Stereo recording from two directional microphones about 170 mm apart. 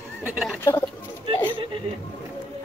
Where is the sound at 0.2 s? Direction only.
5° right (ahead or behind).